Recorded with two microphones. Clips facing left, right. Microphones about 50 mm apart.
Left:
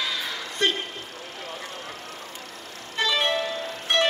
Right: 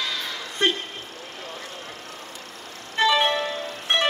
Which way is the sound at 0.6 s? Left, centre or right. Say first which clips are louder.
Right 2 dB; right.